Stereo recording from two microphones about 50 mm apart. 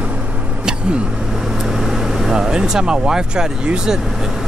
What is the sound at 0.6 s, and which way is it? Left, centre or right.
Vehicle, centre.